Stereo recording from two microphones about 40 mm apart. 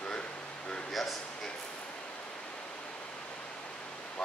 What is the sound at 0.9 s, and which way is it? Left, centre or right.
Speech, centre.